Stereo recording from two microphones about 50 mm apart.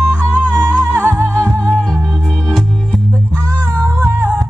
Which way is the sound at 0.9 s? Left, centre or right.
Right.